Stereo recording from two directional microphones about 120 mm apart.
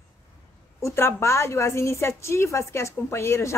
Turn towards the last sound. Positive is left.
turn(degrees=20)  # may be behind; listen again after turning